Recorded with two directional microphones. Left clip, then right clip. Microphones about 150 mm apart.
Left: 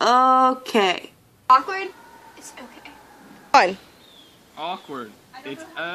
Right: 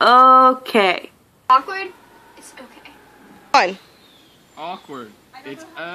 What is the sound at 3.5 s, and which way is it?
Speech, 5° left (ahead or behind).